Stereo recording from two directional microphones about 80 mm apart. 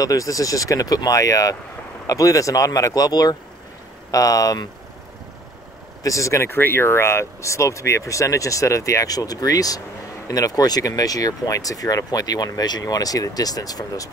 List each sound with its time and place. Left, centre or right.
0.0 s speech: left
6.0 s speech: left